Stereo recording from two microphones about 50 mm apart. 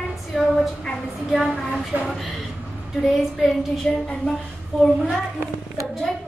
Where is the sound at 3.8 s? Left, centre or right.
Centre.